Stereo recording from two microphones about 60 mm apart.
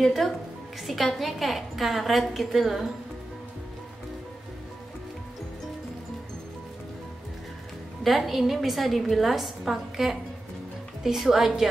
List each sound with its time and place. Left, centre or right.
0.0 s a woman's voice: centre
8.0 s a woman's voice: centre